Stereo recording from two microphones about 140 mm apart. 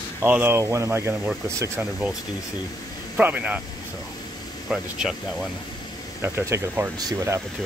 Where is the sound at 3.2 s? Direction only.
10° right (ahead or behind).